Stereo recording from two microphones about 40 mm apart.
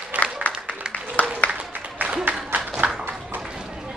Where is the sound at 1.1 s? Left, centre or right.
Left.